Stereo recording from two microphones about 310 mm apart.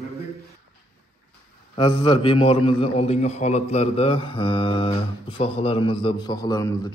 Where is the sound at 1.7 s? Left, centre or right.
Centre.